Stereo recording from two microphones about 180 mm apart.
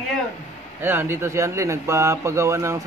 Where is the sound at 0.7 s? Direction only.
10° right (ahead or behind).